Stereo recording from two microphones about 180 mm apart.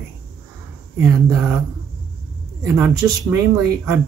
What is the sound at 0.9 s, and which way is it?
Speech, 10° right (ahead or behind).